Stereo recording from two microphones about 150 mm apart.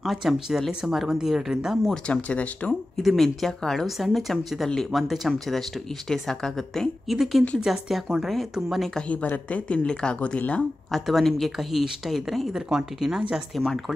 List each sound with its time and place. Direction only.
0.0 s speech: centre (ahead or behind)